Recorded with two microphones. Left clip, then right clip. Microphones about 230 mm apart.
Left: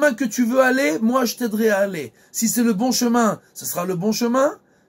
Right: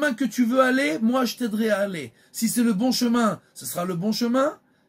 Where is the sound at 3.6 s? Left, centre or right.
Centre.